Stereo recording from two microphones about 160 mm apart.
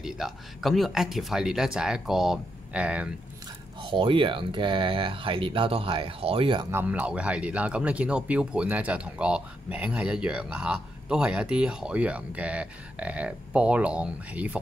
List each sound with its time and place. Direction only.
0.0 s speech: centre (ahead or behind)
3.8 s speech: 30° right (ahead or behind)
6.7 s speech: 10° right (ahead or behind)